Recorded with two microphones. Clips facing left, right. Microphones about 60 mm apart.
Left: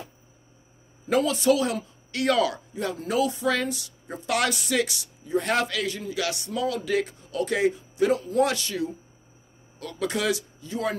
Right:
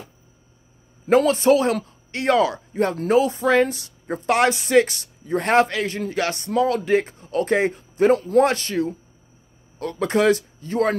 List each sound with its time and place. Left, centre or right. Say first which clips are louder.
1.1 s a man's voice: right 6 dB; right
2.7 s speech: right 9 dB; right
3.2 s a man's voice: right 6 dB; right
5.5 s a man's voice: right 11 dB; right